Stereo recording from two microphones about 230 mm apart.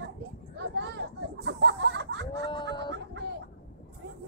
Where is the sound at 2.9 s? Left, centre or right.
Right.